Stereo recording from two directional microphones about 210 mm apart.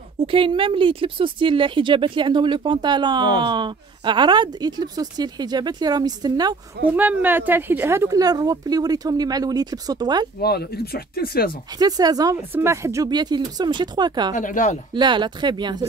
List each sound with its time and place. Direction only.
0.2 s speech: 25° right (ahead or behind)
7.0 s a woman's voice: 10° right (ahead or behind)
10.4 s speech: 50° left (ahead or behind)
11.8 s speech: 20° right (ahead or behind)
14.3 s speech: 35° left (ahead or behind)
15.0 s speech: 20° right (ahead or behind)